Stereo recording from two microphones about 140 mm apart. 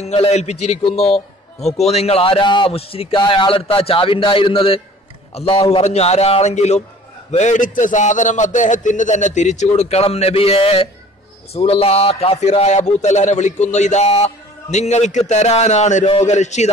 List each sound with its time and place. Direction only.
0.0 s a man's voice: 50° left (ahead or behind)